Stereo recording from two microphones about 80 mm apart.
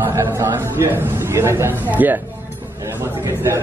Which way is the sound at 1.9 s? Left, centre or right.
Right.